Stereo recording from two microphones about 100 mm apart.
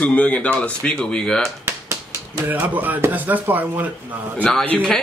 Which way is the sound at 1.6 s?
30° right (ahead or behind).